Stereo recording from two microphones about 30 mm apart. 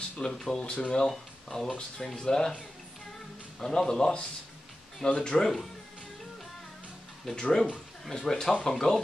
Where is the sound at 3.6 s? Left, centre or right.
Left.